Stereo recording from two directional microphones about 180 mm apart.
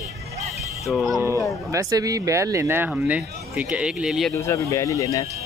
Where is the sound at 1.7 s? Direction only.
20° right (ahead or behind); by 4.3 s 5° right (ahead or behind).